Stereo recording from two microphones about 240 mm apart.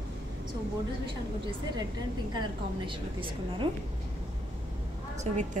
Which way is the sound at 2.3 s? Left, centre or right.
Centre.